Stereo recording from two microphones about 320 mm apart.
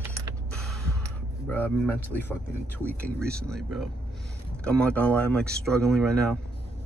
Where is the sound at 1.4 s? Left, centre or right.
Centre.